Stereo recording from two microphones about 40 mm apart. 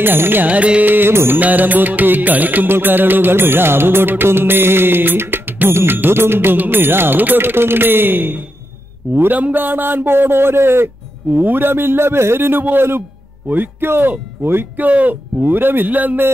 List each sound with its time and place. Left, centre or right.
0.0 s music: right
0.5 s speech: right
0.8 s music: right
1.1 s music: right
1.4 s music: right
6.5 s music: right
11.3 s music: right
13.5 s music: right
14.8 s speech: right
15.4 s music: right